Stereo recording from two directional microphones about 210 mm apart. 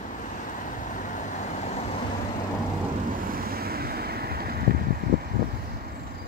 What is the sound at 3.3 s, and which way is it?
Vehicle, 45° right (ahead or behind).